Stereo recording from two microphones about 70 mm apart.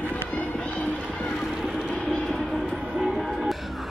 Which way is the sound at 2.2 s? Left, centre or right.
Centre.